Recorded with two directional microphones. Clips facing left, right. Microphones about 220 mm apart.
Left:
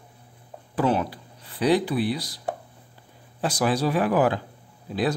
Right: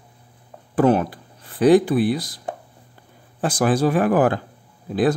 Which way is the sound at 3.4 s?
50° right (ahead or behind).